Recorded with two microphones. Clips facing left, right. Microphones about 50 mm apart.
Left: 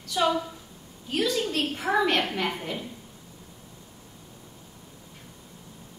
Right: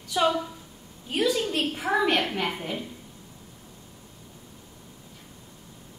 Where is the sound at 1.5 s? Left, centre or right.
Centre.